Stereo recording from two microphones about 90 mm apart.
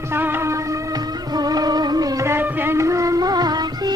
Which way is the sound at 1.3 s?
45° right (ahead or behind).